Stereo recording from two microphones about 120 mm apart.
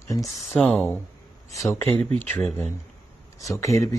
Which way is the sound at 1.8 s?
55° right (ahead or behind).